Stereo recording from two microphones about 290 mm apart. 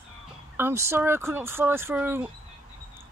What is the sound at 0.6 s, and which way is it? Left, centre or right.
Speech, centre.